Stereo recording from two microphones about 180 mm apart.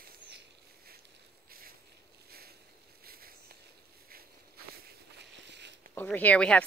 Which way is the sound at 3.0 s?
55° right (ahead or behind).